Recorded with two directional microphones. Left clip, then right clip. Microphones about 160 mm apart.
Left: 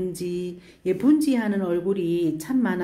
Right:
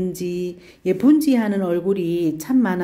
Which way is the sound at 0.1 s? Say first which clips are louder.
Right 4 dB; 15° right (ahead or behind).